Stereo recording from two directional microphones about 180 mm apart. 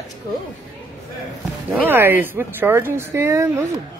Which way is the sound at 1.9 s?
10° right (ahead or behind).